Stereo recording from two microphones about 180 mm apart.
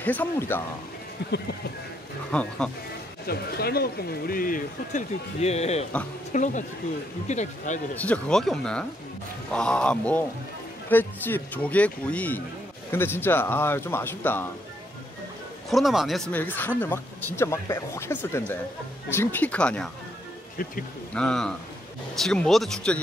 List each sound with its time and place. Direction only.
0.0 s speech: 10° left (ahead or behind)
2.3 s speech: 5° left (ahead or behind)
3.3 s speech: 60° left (ahead or behind)
5.4 s speech: 35° left (ahead or behind)
7.9 s speech: 10° left (ahead or behind)
15.7 s speech: centre (ahead or behind)
21.1 s speech: 5° left (ahead or behind)